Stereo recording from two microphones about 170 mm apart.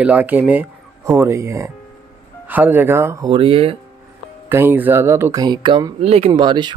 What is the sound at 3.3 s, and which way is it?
Speech, 30° right (ahead or behind).